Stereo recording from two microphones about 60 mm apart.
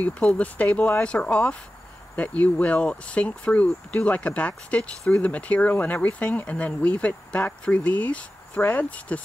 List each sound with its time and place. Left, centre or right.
0.0 s speech: left